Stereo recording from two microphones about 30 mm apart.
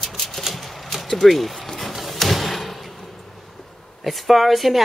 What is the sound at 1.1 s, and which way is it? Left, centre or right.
Speech, centre.